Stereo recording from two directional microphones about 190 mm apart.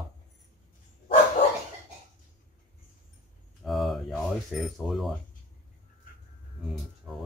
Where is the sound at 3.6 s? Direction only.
Centre (ahead or behind).